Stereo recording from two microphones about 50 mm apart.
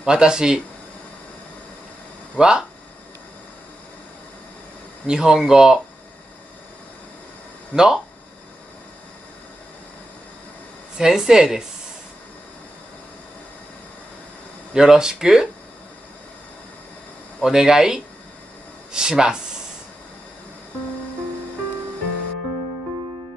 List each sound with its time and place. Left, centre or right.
0.0 s speech: centre
2.3 s speech: centre
5.0 s speech: centre
7.7 s speech: centre
11.0 s speech: centre
14.7 s speech: centre
17.4 s speech: centre